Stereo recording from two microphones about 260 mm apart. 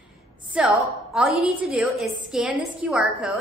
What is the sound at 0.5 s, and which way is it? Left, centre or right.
A woman's voice, centre.